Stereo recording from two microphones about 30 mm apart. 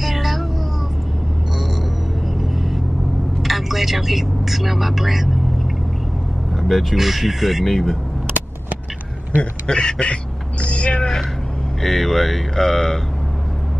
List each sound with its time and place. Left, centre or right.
0.0 s a sound: centre
3.4 s speech: centre
6.5 s speech: centre
8.3 s vehicle: right
9.7 s speech: left
10.6 s speech: left
11.0 s a sound: left
11.8 s speech: centre